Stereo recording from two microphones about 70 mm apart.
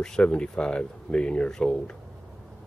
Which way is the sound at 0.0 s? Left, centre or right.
Centre.